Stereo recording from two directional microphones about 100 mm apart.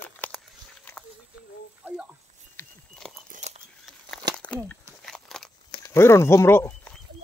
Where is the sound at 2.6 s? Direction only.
25° left (ahead or behind).